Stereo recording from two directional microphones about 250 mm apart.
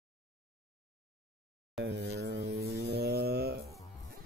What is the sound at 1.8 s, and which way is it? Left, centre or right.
Mains hum, right.